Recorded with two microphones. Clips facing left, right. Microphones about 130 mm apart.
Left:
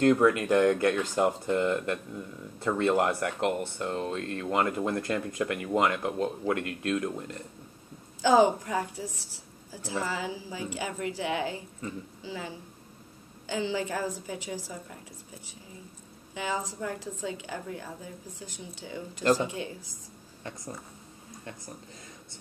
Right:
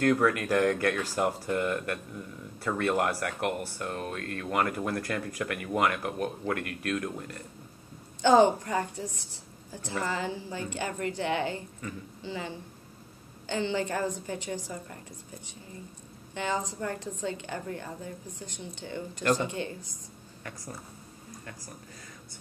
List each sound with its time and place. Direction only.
0.0 s speech: 20° left (ahead or behind)
8.2 s a woman's voice: 5° left (ahead or behind)
11.8 s speech: 25° left (ahead or behind)
12.2 s a woman's voice: 5° left (ahead or behind)